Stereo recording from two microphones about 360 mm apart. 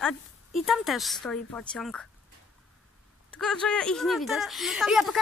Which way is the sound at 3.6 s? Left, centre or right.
Centre.